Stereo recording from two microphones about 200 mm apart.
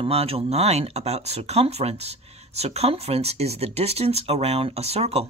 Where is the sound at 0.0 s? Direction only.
30° right (ahead or behind).